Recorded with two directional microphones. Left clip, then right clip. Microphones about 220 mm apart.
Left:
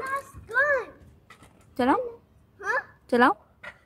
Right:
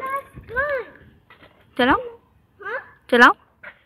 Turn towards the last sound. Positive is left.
turn(degrees=5)  # may be behind; listen again after turning